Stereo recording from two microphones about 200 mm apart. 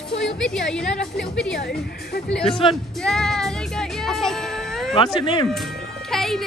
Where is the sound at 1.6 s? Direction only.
55° left (ahead or behind).